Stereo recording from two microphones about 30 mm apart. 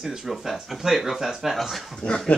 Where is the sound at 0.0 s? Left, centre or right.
Centre.